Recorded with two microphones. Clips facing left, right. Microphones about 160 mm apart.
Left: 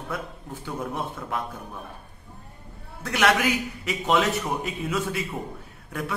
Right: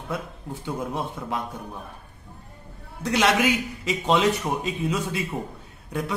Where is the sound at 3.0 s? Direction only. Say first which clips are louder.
Right 1 dB; 20° right (ahead or behind).